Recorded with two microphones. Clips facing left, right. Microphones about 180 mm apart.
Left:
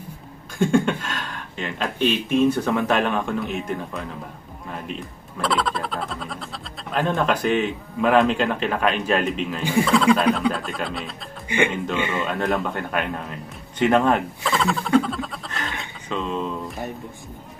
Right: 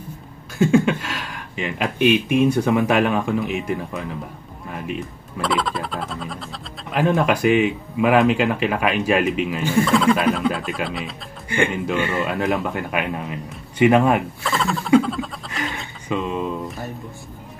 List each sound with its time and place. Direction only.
0.6 s speech: 5° right (ahead or behind)
9.6 s speech: 15° left (ahead or behind)
9.8 s speech: centre (ahead or behind)
11.4 s speech: 15° left (ahead or behind)
12.3 s speech: centre (ahead or behind)